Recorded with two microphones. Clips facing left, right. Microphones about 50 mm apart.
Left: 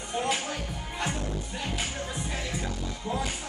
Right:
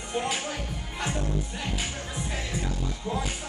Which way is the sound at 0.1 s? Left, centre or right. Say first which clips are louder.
Even; centre.